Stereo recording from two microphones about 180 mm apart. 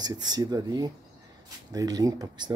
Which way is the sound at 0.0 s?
20° right (ahead or behind).